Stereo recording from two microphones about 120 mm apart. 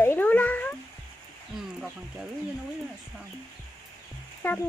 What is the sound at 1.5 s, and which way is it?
Speech, 5° right (ahead or behind).